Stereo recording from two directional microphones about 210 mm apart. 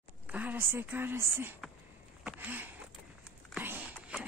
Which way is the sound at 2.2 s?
10° right (ahead or behind).